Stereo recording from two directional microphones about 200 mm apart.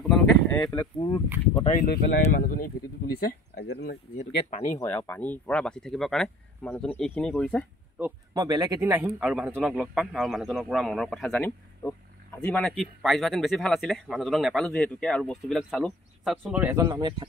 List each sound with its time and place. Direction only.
0.0 s a sound: centre (ahead or behind)
0.7 s speech: 20° left (ahead or behind)
2.3 s speech: 45° left (ahead or behind)
4.2 s speech: 40° left (ahead or behind)
4.7 s speech: 10° left (ahead or behind)
8.0 s speech: 20° right (ahead or behind)
16.8 s speech: 25° right (ahead or behind)